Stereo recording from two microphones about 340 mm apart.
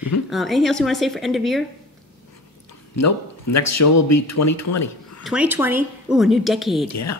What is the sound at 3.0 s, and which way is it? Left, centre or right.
Speech, left.